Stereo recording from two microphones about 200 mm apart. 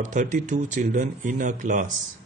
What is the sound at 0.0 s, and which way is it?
Speech, 35° right (ahead or behind).